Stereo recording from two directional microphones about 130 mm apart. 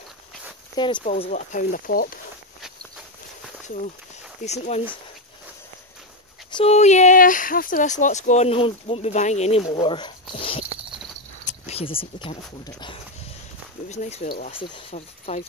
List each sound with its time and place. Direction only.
0.8 s speech: 35° left (ahead or behind)
1.3 s speech: 75° left (ahead or behind); by 2.1 s 90° left
4.4 s speech: 60° left (ahead or behind)
6.6 s speech: 60° left (ahead or behind)
9.8 s speech: 35° left (ahead or behind)
11.4 s a sound: 55° left (ahead or behind)
13.8 s speech: 60° left (ahead or behind)
14.5 s speech: 45° left (ahead or behind)